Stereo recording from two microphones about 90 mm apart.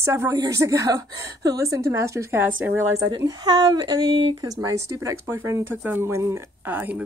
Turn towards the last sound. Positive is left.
turn(degrees=-20)  # may be behind; listen again after turning